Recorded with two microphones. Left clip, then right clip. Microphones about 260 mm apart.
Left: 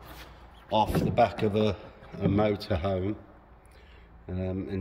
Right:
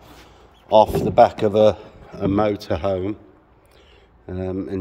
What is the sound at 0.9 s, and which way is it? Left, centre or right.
Speech, centre.